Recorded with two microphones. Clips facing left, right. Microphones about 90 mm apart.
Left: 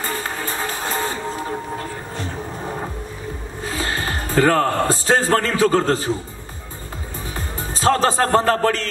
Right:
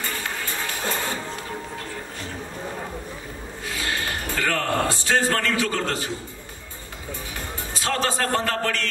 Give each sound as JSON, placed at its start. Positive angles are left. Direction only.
{"t": 0.0, "sound": "music", "side_deg": 35}
{"t": 3.6, "sound": "speech", "side_deg": 35}
{"t": 7.5, "sound": "speech", "side_deg": 35}